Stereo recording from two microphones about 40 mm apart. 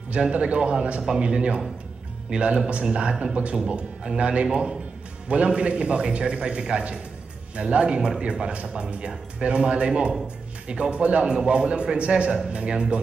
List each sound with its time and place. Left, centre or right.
0.2 s speech: right